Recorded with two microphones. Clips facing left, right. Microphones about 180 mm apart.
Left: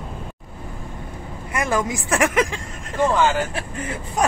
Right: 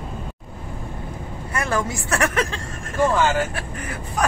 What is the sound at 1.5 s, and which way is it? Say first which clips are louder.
Speech: left 2 dB; 15° left (ahead or behind).